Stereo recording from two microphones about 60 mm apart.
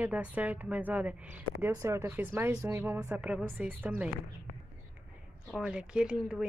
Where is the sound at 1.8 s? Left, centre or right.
Right.